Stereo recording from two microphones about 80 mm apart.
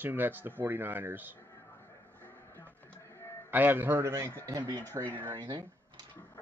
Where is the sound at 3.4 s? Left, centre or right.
Right.